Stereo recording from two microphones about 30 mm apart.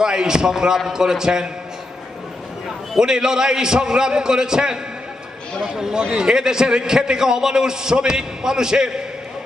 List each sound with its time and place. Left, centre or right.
0.0 s a man's voice: right
3.0 s a man's voice: right
5.8 s a man's voice: right